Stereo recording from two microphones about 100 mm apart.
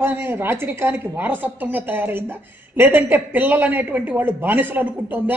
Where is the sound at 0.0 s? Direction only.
20° right (ahead or behind).